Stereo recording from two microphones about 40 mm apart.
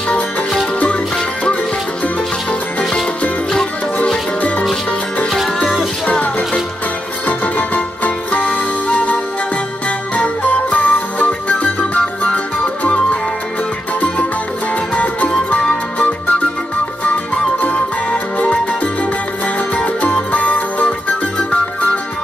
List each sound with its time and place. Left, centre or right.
7.2 s music: left
15.0 s music: left